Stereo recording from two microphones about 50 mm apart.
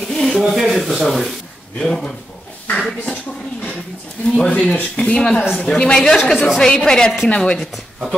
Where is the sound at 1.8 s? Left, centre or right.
Centre.